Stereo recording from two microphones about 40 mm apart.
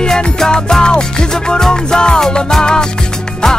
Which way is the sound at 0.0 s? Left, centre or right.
Centre.